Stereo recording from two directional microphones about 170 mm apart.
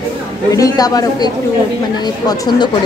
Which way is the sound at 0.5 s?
20° left (ahead or behind).